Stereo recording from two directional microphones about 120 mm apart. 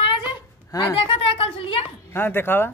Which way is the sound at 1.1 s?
50° left (ahead or behind).